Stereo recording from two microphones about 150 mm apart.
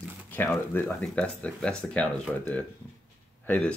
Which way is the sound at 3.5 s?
10° left (ahead or behind).